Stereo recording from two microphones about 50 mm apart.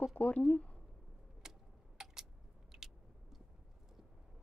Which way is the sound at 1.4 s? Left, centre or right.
Centre.